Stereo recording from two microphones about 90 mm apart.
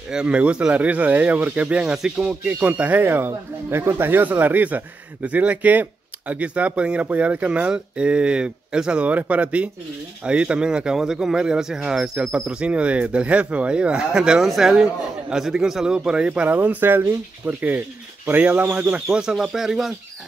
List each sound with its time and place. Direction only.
0.1 s speech: 10° right (ahead or behind)
16.5 s speech: 20° right (ahead or behind)
19.0 s speech: 5° right (ahead or behind)